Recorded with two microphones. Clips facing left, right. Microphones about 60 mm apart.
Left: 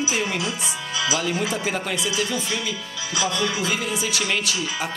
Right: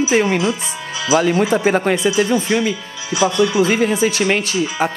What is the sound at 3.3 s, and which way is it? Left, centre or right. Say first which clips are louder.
Speech: right 8 dB; centre.